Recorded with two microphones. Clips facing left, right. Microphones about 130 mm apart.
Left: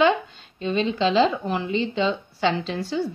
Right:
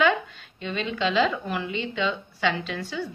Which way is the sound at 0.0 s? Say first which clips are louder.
Left 3 dB; 25° left (ahead or behind).